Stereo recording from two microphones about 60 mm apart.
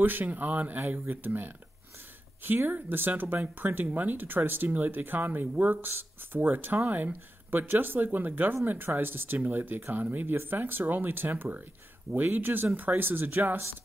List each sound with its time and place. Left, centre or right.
0.0 s speech: right